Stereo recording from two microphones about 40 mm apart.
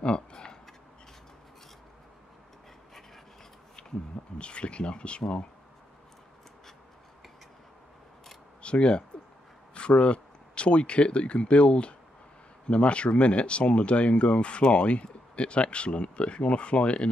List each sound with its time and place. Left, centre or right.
0.0 s a sound: left
4.4 s speech: left
8.6 s speech: left